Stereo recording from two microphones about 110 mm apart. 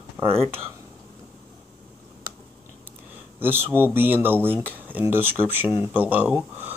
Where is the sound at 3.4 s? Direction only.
20° right (ahead or behind).